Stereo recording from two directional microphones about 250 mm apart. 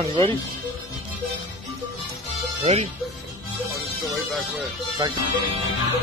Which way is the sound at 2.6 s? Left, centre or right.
Right.